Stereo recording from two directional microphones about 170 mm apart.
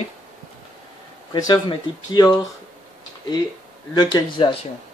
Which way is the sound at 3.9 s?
25° left (ahead or behind).